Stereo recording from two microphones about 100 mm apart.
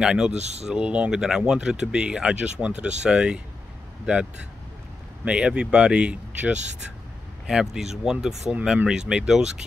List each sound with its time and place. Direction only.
0.0 s speech: 5° right (ahead or behind)
0.4 s speech: 90° right
0.7 s speech: 10° right (ahead or behind)